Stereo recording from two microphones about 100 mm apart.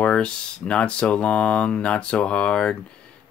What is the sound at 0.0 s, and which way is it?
Speech, 10° left (ahead or behind).